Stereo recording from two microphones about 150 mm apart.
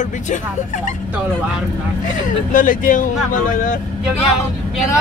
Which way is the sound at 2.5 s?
65° left (ahead or behind).